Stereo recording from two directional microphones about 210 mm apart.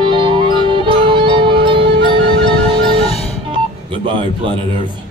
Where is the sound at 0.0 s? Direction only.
25° right (ahead or behind).